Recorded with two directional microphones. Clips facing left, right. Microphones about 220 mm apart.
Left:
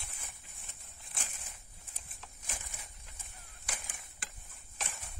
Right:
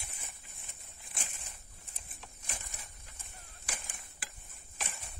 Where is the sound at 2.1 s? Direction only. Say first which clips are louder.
Even; 5° left (ahead or behind).